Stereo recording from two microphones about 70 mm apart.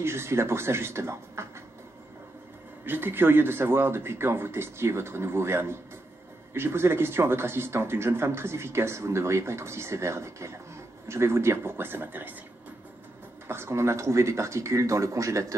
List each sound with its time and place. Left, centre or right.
0.0 s speech: right
2.8 s speech: right
13.5 s speech: right